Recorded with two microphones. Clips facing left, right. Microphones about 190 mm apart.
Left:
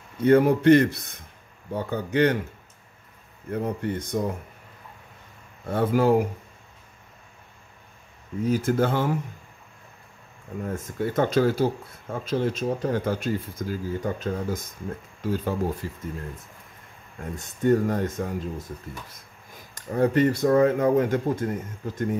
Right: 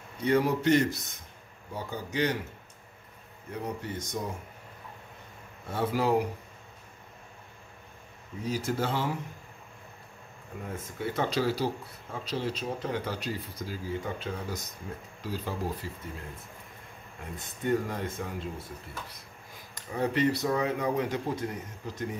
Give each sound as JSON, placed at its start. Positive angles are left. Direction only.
{"t": 0.2, "sound": "a man's voice", "side_deg": 55}
{"t": 3.4, "sound": "a man's voice", "side_deg": 55}
{"t": 5.7, "sound": "speech", "side_deg": 55}
{"t": 8.5, "sound": "speech", "side_deg": 55}
{"t": 10.6, "sound": "speech", "side_deg": 50}
{"t": 17.4, "sound": "speech", "side_deg": 45}
{"t": 19.7, "sound": "speech", "side_deg": 50}